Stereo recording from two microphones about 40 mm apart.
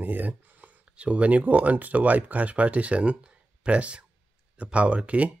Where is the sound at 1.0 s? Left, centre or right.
Right.